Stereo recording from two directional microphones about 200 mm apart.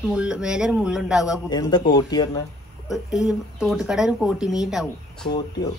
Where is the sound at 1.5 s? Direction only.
20° left (ahead or behind).